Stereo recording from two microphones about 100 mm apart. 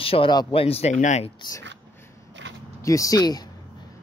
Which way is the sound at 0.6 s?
80° left.